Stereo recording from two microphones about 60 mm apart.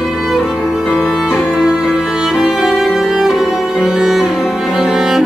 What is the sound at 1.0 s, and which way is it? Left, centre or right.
Music, centre.